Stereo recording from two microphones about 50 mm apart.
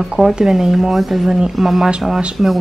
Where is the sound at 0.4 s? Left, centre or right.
Centre.